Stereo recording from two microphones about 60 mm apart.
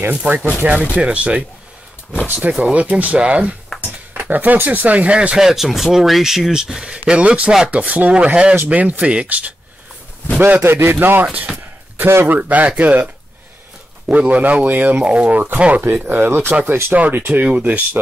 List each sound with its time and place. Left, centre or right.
0.1 s speech: right
5.4 s speech: centre; by 9.5 s right
10.4 s speech: right
11.2 s speech: centre